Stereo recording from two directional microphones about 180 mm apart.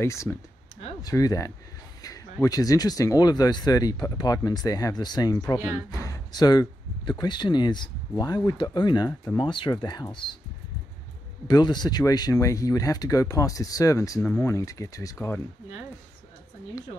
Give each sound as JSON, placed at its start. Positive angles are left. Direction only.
{"t": 0.0, "sound": "speech", "side_deg": 15}
{"t": 11.4, "sound": "speech", "side_deg": 25}